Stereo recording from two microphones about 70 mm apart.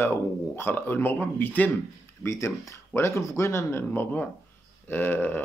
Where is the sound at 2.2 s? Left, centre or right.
Left.